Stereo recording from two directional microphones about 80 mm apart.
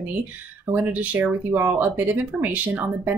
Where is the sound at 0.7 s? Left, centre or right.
Right.